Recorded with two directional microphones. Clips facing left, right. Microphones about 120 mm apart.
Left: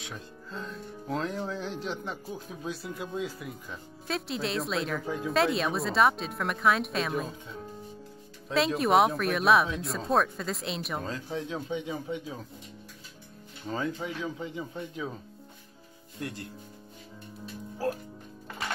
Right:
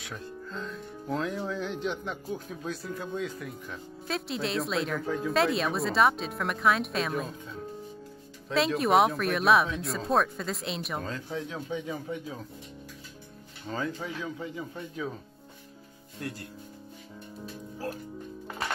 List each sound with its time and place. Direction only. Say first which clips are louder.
0.5 s speech: left 1 dB; centre (ahead or behind)
5.0 s speech: right 2 dB; 15° left (ahead or behind)
5.3 s speech: left 1 dB; centre (ahead or behind)
8.5 s speech: even; centre (ahead or behind)
11.1 s a man's voice: left 1 dB; 30° left (ahead or behind)
13.7 s a man's voice: left 1 dB; 25° left (ahead or behind)
16.2 s a man's voice: even; 20° left (ahead or behind)